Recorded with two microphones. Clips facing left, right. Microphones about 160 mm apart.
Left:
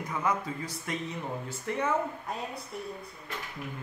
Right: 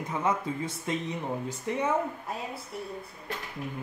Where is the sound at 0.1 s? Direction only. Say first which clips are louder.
Right 2 dB; 25° right (ahead or behind).